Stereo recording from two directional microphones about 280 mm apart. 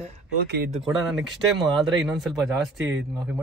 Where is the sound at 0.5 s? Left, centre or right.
Right.